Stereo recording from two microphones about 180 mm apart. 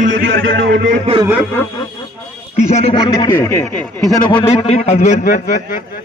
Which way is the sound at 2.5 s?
35° left (ahead or behind).